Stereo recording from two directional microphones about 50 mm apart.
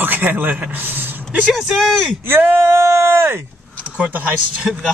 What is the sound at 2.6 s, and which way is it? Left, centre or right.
Speech, right.